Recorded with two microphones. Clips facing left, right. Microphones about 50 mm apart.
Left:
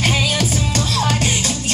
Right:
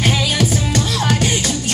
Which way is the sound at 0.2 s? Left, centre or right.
Right.